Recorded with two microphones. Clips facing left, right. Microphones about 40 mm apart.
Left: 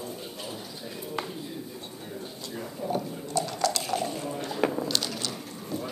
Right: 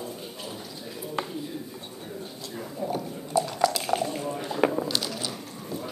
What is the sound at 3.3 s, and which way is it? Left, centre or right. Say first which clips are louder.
Dishes: right 4 dB; centre.